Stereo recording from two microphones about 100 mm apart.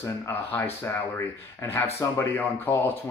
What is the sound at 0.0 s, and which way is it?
Speech, 25° left (ahead or behind).